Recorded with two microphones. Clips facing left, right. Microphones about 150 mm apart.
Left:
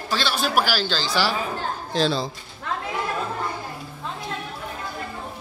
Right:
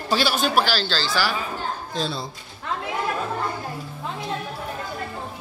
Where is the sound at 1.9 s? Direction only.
90° left.